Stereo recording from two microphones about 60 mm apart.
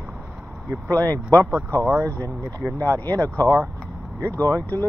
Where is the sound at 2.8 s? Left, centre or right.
Left.